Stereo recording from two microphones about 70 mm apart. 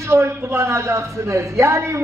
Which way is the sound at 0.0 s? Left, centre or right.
Right.